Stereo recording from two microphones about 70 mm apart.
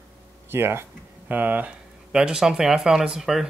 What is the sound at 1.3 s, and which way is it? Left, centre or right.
Speech, right.